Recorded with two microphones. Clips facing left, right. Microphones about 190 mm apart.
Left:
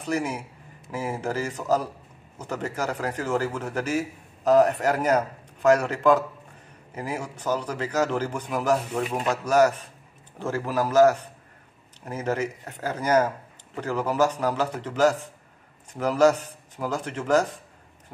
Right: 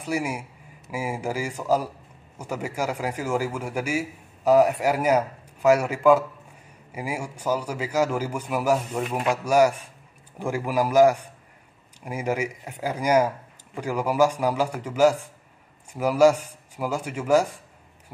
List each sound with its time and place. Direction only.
0.0 s a man's voice: 10° right (ahead or behind)